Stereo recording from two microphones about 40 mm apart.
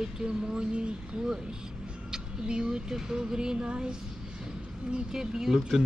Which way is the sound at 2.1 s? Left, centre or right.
Centre.